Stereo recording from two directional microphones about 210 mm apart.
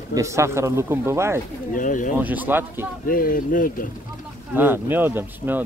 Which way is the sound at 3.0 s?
40° left (ahead or behind).